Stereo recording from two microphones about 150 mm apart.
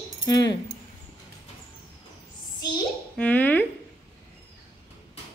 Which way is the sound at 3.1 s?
10° left (ahead or behind).